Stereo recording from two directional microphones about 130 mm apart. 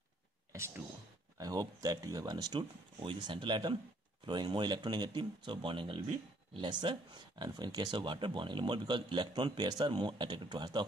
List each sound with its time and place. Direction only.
0.5 s speech: 20° right (ahead or behind)